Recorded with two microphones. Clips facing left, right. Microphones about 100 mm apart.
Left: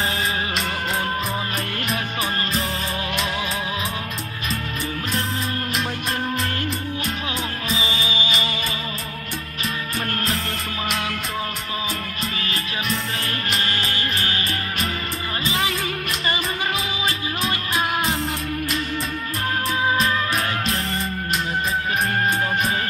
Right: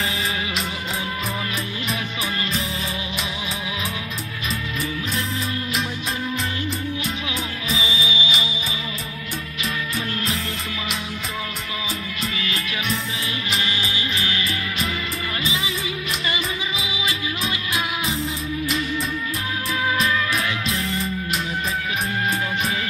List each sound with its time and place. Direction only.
7.7 s music: 40° left (ahead or behind)
13.6 s music: 45° left (ahead or behind)
16.8 s music: 40° left (ahead or behind)
20.0 s music: 35° left (ahead or behind)